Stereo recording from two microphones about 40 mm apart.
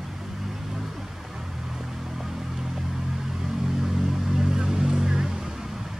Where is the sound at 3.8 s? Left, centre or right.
Centre.